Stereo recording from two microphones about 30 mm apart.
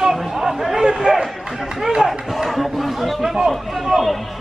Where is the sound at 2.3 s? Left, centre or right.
Centre.